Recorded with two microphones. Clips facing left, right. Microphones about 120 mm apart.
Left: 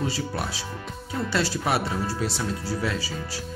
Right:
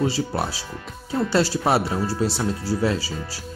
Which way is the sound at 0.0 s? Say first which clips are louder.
Right 5 dB; 30° right (ahead or behind).